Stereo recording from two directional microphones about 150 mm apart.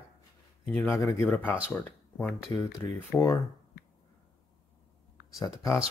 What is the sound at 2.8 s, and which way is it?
Speech, 20° left (ahead or behind).